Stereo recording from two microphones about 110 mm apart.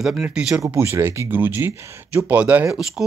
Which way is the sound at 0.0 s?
5° right (ahead or behind).